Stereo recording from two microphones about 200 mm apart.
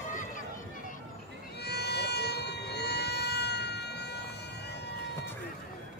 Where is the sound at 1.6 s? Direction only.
55° left (ahead or behind).